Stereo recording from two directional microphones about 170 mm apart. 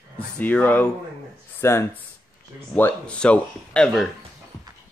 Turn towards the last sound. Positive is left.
turn(degrees=0)  # may be behind; listen again after turning